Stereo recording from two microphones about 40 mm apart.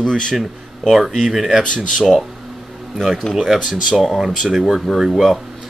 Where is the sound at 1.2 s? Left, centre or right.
Centre.